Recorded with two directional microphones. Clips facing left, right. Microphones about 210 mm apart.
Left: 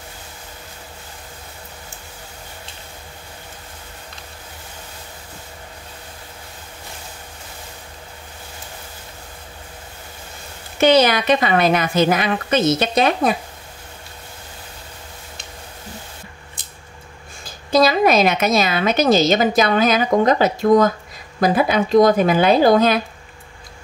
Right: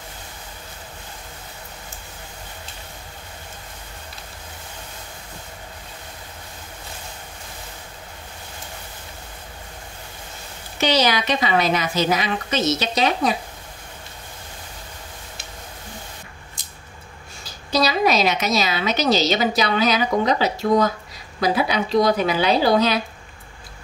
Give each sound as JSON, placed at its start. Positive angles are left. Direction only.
{"t": 10.8, "sound": "a woman's voice", "side_deg": 55}
{"t": 17.5, "sound": "a woman's voice", "side_deg": 50}